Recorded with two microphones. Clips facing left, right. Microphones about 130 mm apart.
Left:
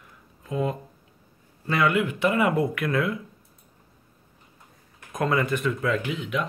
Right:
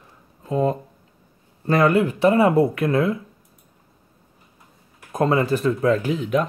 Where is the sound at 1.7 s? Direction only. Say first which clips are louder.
Right 6 dB; 40° right (ahead or behind).